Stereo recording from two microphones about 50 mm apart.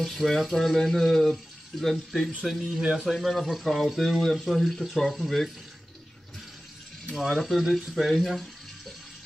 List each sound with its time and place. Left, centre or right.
0.0 s speech: centre
2.8 s speech: right
3.1 s speech: centre
7.2 s speech: centre